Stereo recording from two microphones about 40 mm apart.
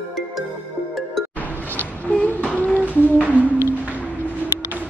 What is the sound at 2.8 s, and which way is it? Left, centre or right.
Humming, right.